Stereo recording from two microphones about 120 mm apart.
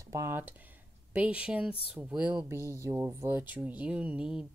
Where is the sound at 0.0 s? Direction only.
25° right (ahead or behind); by 2.4 s 10° right (ahead or behind).